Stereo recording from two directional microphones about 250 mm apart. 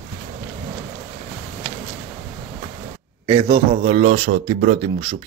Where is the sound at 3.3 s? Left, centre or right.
Centre.